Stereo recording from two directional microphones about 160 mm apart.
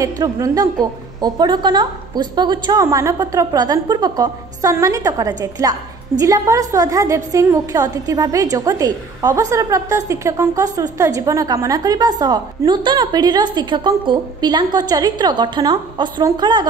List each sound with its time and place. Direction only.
0.0 s a woman's voice: 20° right (ahead or behind)